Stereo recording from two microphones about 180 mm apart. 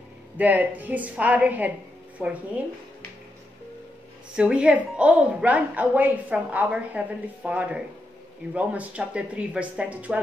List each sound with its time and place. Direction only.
0.4 s a woman's voice: 10° right (ahead or behind)
4.4 s a woman's voice: 5° right (ahead or behind)